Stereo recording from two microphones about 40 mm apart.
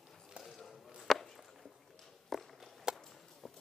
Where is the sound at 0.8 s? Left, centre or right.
Centre.